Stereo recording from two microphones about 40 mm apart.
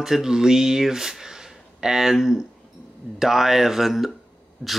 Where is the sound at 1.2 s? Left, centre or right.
Centre.